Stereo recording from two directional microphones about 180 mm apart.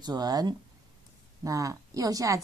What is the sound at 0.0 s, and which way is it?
Speech, 20° right (ahead or behind).